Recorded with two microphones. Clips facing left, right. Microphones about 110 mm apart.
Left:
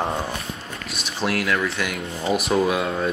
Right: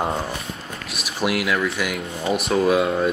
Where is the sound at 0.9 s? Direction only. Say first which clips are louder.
Right 2 dB; 5° right (ahead or behind).